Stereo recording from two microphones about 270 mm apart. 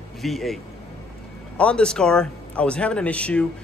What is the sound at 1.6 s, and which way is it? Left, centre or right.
Speech, centre.